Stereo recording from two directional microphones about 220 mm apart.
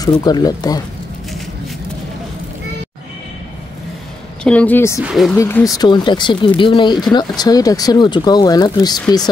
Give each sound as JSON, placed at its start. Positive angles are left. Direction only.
{"t": 0.0, "sound": "speech", "side_deg": 20}
{"t": 4.4, "sound": "speech", "side_deg": 5}
{"t": 5.0, "sound": "speech", "side_deg": 0}
{"t": 5.4, "sound": "speech", "side_deg": 15}